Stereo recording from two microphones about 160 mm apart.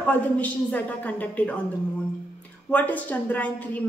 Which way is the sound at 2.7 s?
10° left (ahead or behind).